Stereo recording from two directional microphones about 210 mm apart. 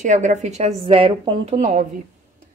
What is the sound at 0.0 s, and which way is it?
Speech, 35° right (ahead or behind).